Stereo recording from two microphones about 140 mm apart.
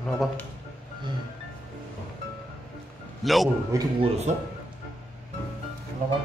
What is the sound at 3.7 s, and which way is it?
Speech, 25° right (ahead or behind).